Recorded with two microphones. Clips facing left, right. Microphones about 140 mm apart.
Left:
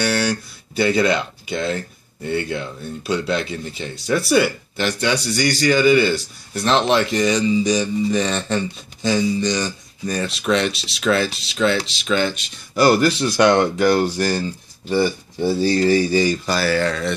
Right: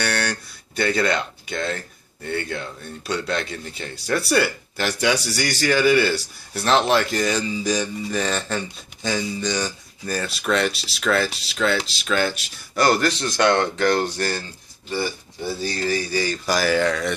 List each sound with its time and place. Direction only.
0.0 s speech: 5° left (ahead or behind)
12.8 s speech: 10° left (ahead or behind)
15.4 s speech: 30° left (ahead or behind)
16.4 s speech: 15° right (ahead or behind)